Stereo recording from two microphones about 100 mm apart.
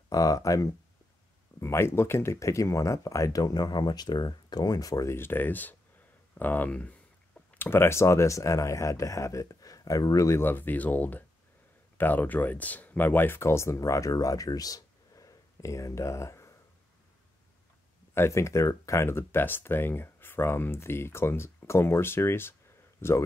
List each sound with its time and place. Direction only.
0.1 s speech: 35° left (ahead or behind)
18.1 s speech: 25° left (ahead or behind)